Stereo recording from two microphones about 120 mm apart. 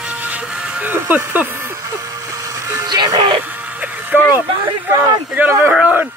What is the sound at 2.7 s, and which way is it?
Music, 35° right (ahead or behind).